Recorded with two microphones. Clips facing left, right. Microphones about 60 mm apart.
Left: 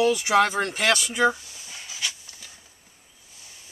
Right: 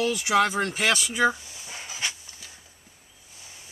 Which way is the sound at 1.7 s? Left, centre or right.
Right.